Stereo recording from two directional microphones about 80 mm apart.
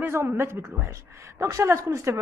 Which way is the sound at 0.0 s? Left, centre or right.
Right.